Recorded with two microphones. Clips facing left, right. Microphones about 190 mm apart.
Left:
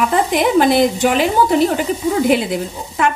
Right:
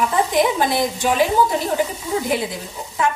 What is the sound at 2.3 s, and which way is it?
Speech, 70° left (ahead or behind).